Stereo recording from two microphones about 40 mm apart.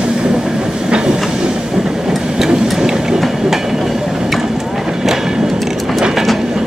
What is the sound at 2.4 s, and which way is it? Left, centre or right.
Train, centre.